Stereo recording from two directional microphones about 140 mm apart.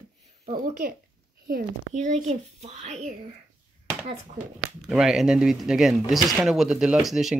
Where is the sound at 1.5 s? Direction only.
65° right (ahead or behind).